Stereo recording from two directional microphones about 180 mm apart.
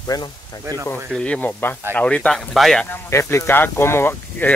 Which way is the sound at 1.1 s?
5° left (ahead or behind).